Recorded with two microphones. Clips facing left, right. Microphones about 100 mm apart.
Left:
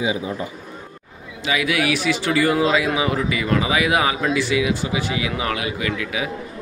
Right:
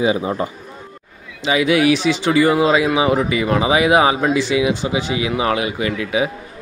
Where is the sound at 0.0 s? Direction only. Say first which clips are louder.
Right 5 dB; 55° right (ahead or behind).